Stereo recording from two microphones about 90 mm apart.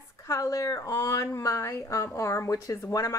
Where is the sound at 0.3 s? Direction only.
35° left (ahead or behind).